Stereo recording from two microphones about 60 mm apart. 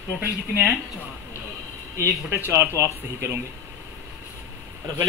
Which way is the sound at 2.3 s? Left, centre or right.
Right.